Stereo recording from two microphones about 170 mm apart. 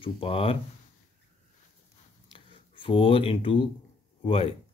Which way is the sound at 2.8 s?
30° left (ahead or behind).